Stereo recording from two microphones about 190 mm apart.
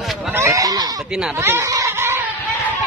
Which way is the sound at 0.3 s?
15° right (ahead or behind).